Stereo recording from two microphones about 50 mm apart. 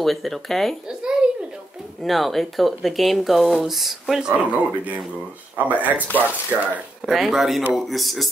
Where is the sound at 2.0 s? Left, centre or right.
Centre.